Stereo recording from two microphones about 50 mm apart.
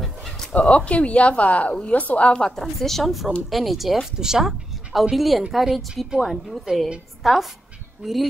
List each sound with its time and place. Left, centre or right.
0.0 s dog: centre
0.6 s speech: left
2.5 s speech: centre